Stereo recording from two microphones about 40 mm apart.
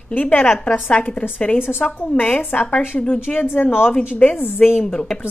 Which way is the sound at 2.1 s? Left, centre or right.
Left.